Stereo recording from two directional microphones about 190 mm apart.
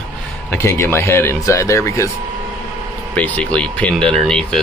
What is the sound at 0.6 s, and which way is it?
Speech, 15° left (ahead or behind).